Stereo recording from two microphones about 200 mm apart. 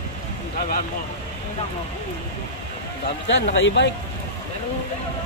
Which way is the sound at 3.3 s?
65° left (ahead or behind).